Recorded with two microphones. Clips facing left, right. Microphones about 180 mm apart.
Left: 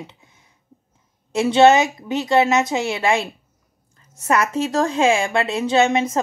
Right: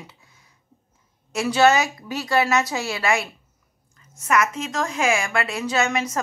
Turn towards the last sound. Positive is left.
turn(degrees=25)  # may be behind; listen again after turning